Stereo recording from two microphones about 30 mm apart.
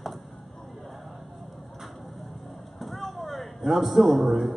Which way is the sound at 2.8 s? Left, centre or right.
Centre.